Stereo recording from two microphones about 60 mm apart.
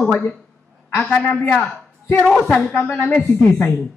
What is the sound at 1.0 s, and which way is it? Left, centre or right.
Speech, left.